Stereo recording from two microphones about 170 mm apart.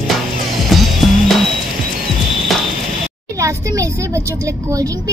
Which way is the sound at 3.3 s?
20° right (ahead or behind).